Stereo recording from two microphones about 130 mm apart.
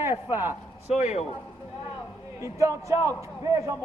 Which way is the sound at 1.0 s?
60° left (ahead or behind).